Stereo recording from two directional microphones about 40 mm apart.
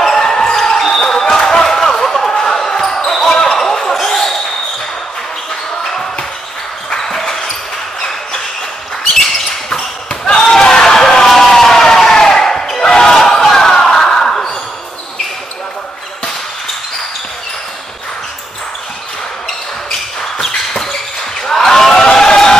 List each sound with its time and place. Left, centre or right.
0.0 s basketball bounce: centre
3.3 s basketball bounce: left
3.5 s basketball bounce: centre
6.9 s basketball bounce: centre
10.2 s a sound: centre
20.2 s a sound: centre